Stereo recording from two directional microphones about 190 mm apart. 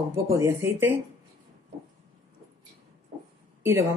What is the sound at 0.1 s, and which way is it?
Speech, 15° right (ahead or behind).